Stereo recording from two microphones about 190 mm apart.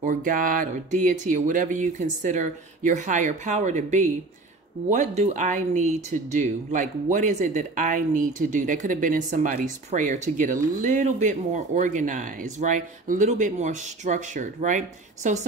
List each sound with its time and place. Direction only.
0.0 s speech: 45° right (ahead or behind)